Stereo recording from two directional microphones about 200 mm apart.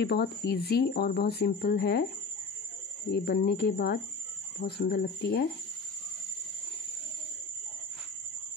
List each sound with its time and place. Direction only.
0.0 s speech: 55° left (ahead or behind)
3.1 s speech: 55° left (ahead or behind)